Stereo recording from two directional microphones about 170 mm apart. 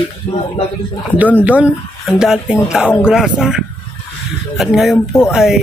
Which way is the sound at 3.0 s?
5° right (ahead or behind).